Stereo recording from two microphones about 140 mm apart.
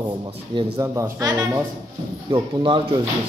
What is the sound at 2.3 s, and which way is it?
Speech, 35° right (ahead or behind).